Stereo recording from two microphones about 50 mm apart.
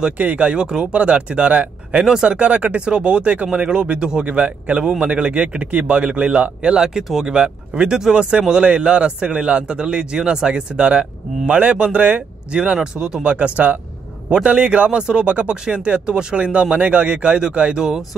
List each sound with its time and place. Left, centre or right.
0.2 s speech: right
0.5 s speech: centre
2.0 s speech: centre